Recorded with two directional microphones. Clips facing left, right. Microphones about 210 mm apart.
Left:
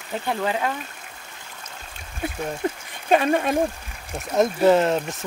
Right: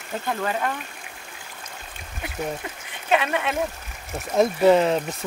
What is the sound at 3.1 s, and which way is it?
Speech, 45° left (ahead or behind).